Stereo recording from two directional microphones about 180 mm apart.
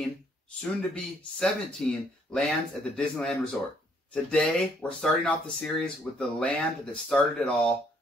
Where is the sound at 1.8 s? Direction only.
5° left (ahead or behind).